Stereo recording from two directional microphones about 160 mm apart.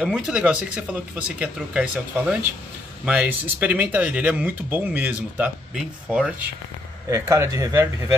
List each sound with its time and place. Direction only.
0.0 s speech: 5° right (ahead or behind)
7.1 s speech: 20° right (ahead or behind)